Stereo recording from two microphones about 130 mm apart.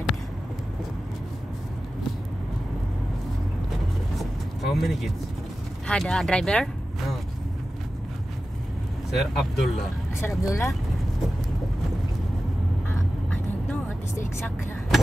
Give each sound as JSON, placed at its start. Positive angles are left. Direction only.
{"t": 4.2, "sound": "vehicle", "side_deg": 0}
{"t": 5.9, "sound": "speech", "side_deg": 5}
{"t": 9.1, "sound": "speech", "side_deg": 0}
{"t": 10.2, "sound": "speech", "side_deg": 20}